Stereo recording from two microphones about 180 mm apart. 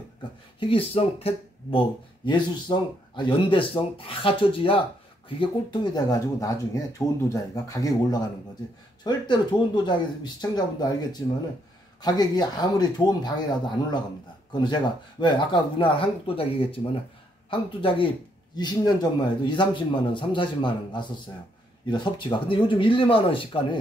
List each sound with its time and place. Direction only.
0.6 s speech: 30° left (ahead or behind)